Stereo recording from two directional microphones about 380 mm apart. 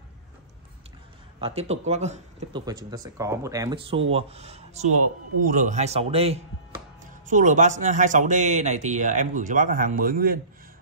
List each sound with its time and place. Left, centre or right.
1.4 s a man's voice: centre